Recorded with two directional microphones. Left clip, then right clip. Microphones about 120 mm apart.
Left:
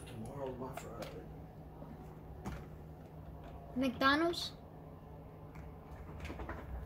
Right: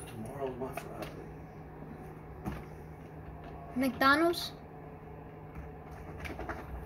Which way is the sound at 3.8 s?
15° left (ahead or behind).